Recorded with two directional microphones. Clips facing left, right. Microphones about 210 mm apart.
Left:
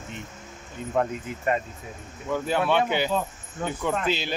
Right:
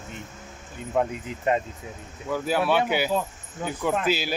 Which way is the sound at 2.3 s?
5° right (ahead or behind).